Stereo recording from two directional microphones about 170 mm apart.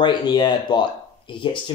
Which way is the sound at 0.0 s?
25° left (ahead or behind).